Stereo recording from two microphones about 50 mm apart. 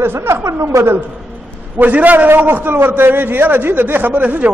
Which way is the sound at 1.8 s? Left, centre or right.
Right.